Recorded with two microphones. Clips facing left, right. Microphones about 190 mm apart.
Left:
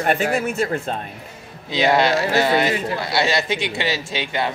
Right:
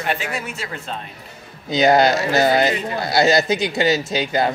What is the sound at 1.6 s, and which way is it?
A man's voice, 40° right (ahead or behind).